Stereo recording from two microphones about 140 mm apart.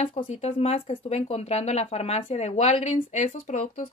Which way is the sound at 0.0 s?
50° left (ahead or behind).